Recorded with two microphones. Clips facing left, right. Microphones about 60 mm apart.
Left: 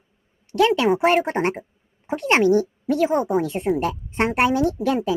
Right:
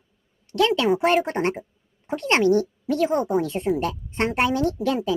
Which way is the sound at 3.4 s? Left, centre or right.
Left.